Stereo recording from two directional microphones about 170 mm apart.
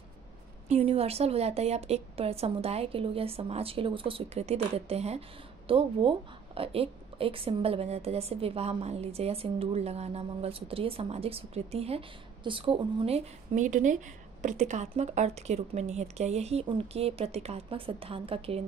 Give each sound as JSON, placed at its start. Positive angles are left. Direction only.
{"t": 0.7, "sound": "a woman's voice", "side_deg": -35}